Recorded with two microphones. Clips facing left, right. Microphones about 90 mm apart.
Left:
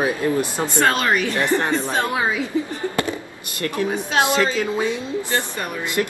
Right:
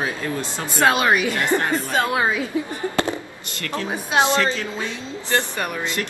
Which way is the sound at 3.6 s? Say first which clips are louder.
Left 4 dB; 15° left (ahead or behind).